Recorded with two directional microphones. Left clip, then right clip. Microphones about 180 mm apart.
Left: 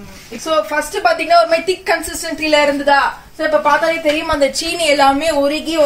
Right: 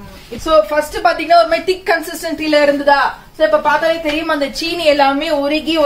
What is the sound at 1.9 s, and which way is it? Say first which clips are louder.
A man's voice: right 1 dB; 15° left (ahead or behind).